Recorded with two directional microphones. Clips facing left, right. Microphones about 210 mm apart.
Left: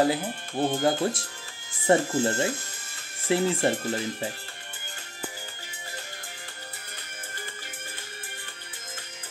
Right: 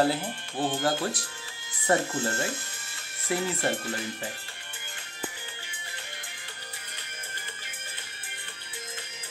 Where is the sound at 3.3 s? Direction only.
30° left (ahead or behind).